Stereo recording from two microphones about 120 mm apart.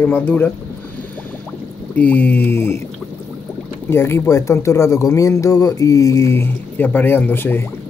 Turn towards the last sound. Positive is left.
turn(degrees=15)  # may be behind; listen again after turning